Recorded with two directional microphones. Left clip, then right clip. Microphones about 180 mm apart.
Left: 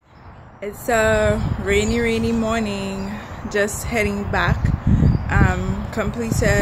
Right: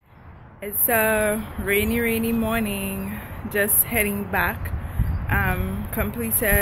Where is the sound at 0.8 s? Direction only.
15° left (ahead or behind).